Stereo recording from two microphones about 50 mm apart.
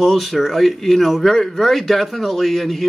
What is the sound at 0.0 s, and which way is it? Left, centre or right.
Speech, centre.